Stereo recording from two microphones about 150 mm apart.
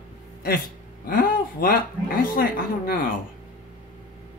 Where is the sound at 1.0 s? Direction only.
75° left (ahead or behind).